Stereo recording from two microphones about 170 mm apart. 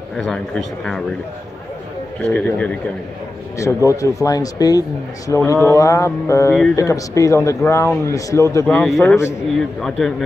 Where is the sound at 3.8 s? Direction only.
20° left (ahead or behind).